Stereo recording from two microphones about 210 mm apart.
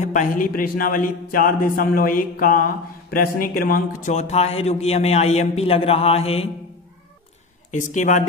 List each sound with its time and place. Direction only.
0.0 s a man's voice: 35° left (ahead or behind)
7.7 s a man's voice: 35° left (ahead or behind)